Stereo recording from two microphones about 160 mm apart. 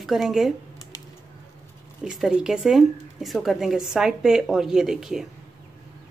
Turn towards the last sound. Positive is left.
turn(degrees=0)  # may be behind; listen again after turning